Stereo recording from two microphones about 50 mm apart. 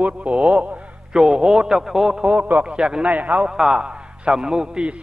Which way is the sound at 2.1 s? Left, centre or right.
Right.